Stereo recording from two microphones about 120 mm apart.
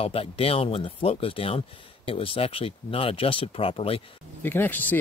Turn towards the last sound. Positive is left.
turn(degrees=15)  # may be behind; listen again after turning